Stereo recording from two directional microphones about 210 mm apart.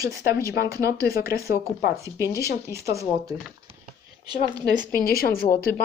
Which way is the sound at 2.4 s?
15° right (ahead or behind).